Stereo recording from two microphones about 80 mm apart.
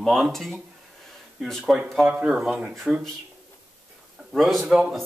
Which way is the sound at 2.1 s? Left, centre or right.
Centre.